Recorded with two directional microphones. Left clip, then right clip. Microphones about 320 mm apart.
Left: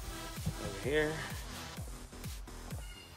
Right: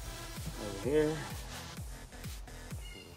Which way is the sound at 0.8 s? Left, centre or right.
Centre.